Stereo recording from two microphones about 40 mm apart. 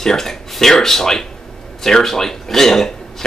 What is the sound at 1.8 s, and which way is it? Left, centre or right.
Speech, centre.